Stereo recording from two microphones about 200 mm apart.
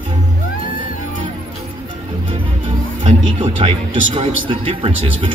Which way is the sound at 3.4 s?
30° right (ahead or behind).